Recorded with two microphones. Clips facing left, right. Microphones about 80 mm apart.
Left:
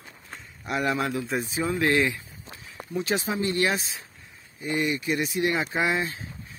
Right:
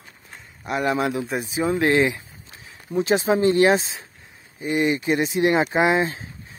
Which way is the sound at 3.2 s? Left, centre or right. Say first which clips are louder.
Right 9 dB; right.